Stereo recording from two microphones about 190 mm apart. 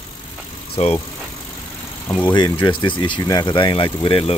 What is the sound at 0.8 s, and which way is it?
Speech, 30° left (ahead or behind).